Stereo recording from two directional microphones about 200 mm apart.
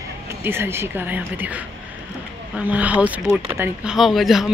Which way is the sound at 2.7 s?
5° right (ahead or behind).